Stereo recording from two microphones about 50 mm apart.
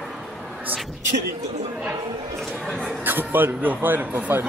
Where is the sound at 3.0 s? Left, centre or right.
Right.